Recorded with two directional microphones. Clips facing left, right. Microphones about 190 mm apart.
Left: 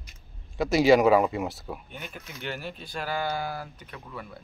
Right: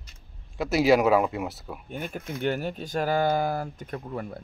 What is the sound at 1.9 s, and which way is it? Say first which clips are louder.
Speech: right 8 dB; 50° right (ahead or behind).